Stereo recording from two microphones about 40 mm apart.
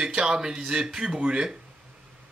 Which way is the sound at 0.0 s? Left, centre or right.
Right.